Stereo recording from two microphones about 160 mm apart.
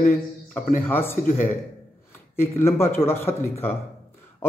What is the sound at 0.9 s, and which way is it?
Speech, 15° left (ahead or behind).